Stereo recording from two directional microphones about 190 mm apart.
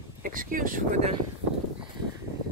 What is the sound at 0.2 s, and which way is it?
Speech, 45° right (ahead or behind).